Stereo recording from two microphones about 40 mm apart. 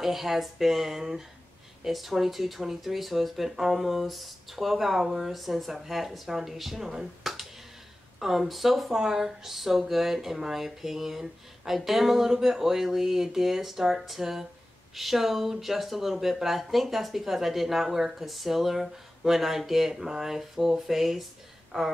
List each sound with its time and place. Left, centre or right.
0.0 s speech: centre
21.7 s speech: centre